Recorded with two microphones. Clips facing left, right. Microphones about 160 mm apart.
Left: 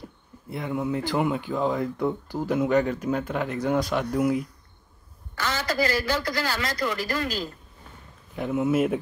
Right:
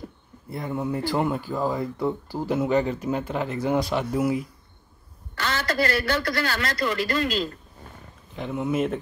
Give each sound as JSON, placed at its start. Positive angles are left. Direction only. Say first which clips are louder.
{"t": 0.5, "sound": "speech", "louder": "even", "side_deg": 0}
{"t": 5.4, "sound": "a man's voice", "louder": "right 1 dB", "side_deg": -65}
{"t": 8.4, "sound": "speech", "louder": "left 2 dB", "side_deg": 5}